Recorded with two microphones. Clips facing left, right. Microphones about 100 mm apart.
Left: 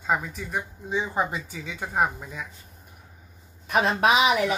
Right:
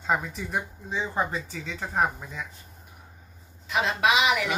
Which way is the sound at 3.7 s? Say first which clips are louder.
Left 3 dB; 50° left (ahead or behind).